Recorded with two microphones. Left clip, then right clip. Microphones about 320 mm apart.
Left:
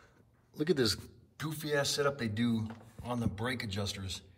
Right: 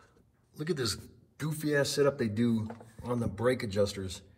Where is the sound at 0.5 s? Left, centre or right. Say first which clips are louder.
Left 3 dB; centre.